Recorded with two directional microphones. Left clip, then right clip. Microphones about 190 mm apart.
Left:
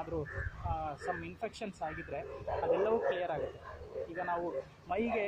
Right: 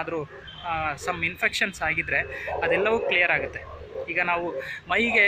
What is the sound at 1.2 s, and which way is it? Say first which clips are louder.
Speech: right 17 dB; 5° left (ahead or behind).